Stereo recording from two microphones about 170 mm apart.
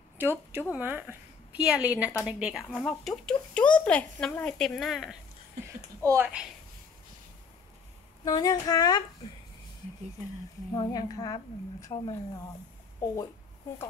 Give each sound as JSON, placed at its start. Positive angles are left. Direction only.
{"t": 0.2, "sound": "a woman's voice", "side_deg": -10}
{"t": 6.0, "sound": "speech", "side_deg": -10}
{"t": 8.3, "sound": "a woman's voice", "side_deg": 20}
{"t": 10.7, "sound": "a woman's voice", "side_deg": 25}